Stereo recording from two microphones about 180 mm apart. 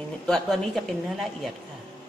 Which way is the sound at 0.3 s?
Centre (ahead or behind).